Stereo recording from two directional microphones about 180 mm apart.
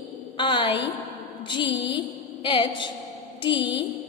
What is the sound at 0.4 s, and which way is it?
A woman's voice, 30° left (ahead or behind).